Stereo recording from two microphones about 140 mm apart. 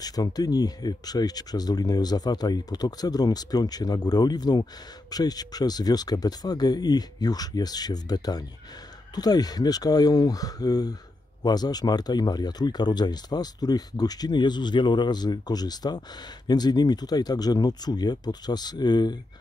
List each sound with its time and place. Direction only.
0.0 s speech: 25° left (ahead or behind)